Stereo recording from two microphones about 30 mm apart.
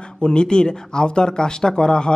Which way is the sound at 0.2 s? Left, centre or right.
Left.